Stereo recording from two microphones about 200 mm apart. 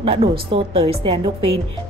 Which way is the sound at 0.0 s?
25° right (ahead or behind).